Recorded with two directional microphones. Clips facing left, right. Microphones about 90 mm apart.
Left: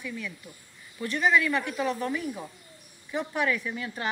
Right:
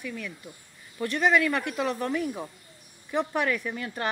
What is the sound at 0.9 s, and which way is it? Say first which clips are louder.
Speech: right 1 dB; 55° right (ahead or behind).